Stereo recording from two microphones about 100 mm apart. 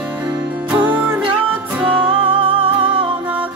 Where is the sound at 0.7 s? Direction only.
15° right (ahead or behind).